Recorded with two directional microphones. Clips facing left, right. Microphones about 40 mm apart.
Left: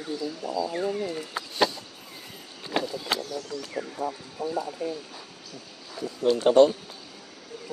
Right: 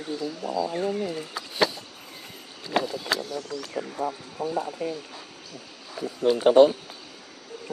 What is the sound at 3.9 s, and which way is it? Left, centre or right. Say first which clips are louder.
Speech: right 2 dB; right.